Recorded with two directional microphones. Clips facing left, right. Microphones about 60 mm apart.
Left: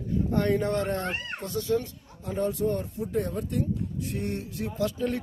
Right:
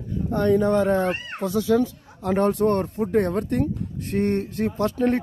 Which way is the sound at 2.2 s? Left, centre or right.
Right.